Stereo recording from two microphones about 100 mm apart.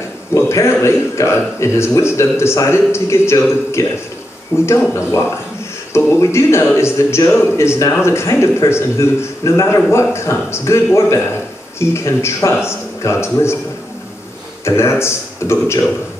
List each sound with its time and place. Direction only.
0.3 s a man's voice: 30° left (ahead or behind)
14.6 s a man's voice: 30° left (ahead or behind)